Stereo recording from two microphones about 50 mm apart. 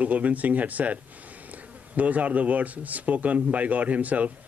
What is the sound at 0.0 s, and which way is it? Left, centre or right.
Speech, right.